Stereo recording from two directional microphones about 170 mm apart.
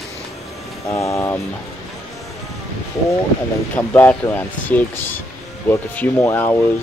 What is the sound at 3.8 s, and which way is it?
Speech, 10° left (ahead or behind).